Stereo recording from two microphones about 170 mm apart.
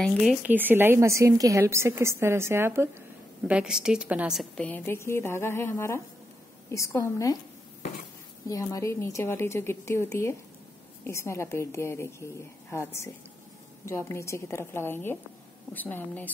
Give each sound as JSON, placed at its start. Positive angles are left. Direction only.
{"t": 0.0, "sound": "speech", "side_deg": 5}
{"t": 0.5, "sound": "a woman's voice", "side_deg": -10}
{"t": 8.5, "sound": "a woman's voice", "side_deg": 20}